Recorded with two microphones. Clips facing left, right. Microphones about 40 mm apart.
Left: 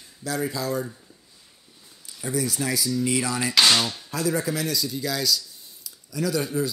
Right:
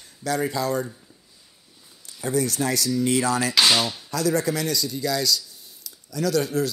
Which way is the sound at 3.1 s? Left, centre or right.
Right.